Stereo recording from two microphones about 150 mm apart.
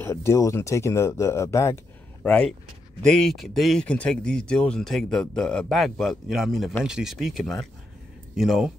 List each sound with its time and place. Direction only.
0.0 s speech: 15° left (ahead or behind)
2.2 s speech: 10° left (ahead or behind)